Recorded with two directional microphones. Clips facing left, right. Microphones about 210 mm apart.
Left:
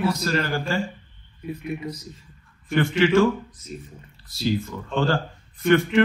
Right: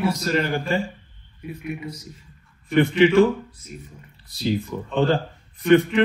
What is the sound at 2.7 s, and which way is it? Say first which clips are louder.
Speech: right 3 dB; 15° right (ahead or behind).